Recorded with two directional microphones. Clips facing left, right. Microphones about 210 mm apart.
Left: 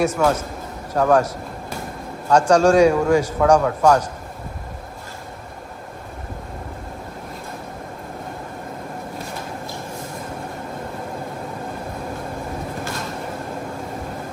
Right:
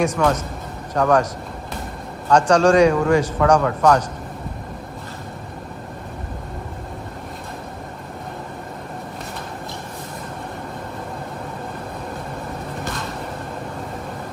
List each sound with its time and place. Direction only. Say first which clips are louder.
0.0 s a man's voice: even; 10° left (ahead or behind)